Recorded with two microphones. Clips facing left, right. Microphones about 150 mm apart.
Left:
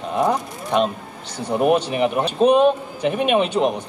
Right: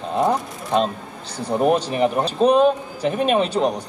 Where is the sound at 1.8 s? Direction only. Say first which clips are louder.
Even; 35° right (ahead or behind).